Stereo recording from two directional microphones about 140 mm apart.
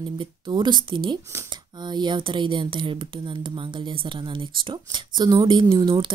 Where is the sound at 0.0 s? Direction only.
35° right (ahead or behind).